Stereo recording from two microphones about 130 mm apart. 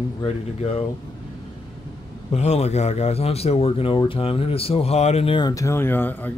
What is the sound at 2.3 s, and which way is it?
Speech, 55° left (ahead or behind).